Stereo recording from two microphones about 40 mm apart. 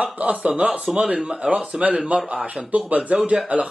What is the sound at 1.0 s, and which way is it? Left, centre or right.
Speech, centre.